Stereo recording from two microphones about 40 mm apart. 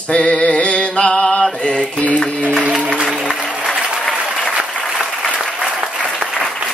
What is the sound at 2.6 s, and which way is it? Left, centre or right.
Music, right.